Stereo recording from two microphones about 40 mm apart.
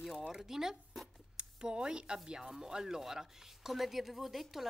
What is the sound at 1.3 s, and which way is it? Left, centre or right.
A woman's voice, right.